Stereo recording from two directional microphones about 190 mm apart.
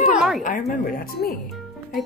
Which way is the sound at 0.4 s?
45° left (ahead or behind).